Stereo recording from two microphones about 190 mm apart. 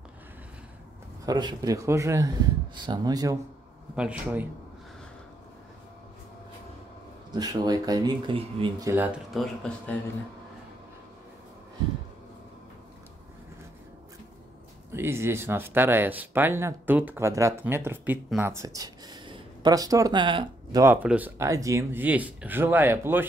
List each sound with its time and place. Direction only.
1.2 s speech: 20° right (ahead or behind)
7.3 s speech: 20° right (ahead or behind); by 9.9 s centre (ahead or behind)
14.9 s speech: 15° right (ahead or behind)
20.8 s speech: 10° right (ahead or behind)